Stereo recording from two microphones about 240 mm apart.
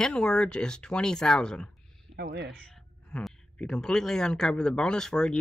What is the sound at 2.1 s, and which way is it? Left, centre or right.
Speech, right.